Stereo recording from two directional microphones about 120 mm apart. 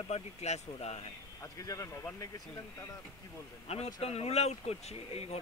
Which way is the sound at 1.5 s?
30° left (ahead or behind).